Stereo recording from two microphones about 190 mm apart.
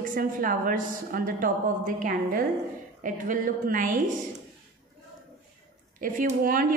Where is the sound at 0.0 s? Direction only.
45° right (ahead or behind).